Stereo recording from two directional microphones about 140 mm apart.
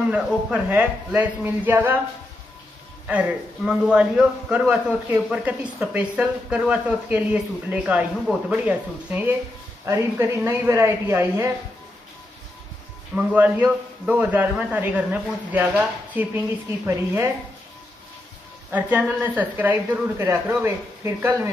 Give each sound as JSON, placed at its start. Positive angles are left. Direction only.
{"t": 0.1, "sound": "a woman's voice", "side_deg": -10}
{"t": 3.1, "sound": "a man's voice", "side_deg": -5}
{"t": 13.1, "sound": "a woman's voice", "side_deg": -10}
{"t": 18.7, "sound": "a woman's voice", "side_deg": -10}